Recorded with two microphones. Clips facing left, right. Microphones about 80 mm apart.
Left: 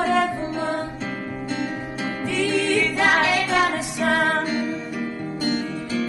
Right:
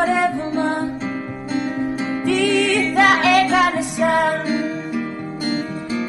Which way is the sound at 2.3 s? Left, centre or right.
Right.